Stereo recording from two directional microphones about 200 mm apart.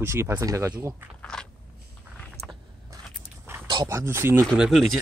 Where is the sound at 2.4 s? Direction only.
55° right (ahead or behind).